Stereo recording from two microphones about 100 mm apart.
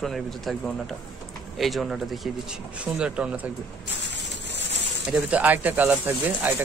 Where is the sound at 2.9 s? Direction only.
10° right (ahead or behind).